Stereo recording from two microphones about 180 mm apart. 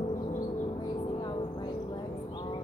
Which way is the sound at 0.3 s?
20° left (ahead or behind).